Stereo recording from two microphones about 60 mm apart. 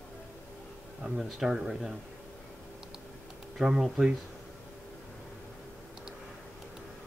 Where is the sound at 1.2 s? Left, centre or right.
Centre.